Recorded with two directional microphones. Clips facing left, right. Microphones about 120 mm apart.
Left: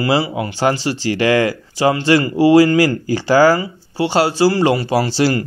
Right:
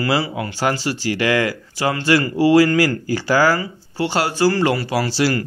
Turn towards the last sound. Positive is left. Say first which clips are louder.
# left 3 dB
turn(degrees=25)  # may be behind; listen again after turning